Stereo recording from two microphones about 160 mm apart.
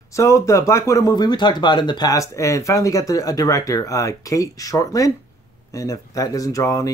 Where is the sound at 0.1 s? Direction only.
20° left (ahead or behind).